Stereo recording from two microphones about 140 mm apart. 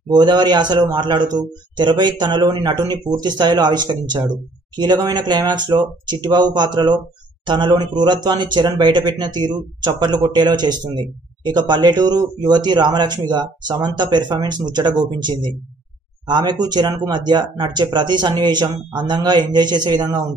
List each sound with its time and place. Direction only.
0.1 s speech: 30° right (ahead or behind)